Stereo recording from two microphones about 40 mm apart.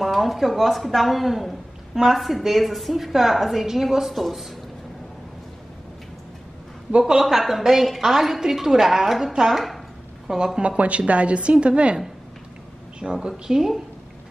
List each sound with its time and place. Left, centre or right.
0.0 s a woman's voice: centre
7.0 s a woman's voice: centre
7.2 s a woman's voice: centre
10.2 s speech: centre
10.8 s a woman's voice: right
13.0 s a woman's voice: right
13.5 s a woman's voice: centre